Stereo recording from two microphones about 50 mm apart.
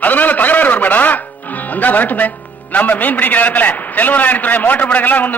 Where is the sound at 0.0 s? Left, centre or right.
Left.